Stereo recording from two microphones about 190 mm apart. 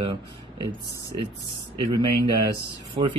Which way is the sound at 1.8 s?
25° right (ahead or behind).